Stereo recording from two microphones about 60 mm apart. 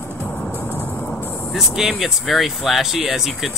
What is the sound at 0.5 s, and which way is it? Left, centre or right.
Vehicle, left.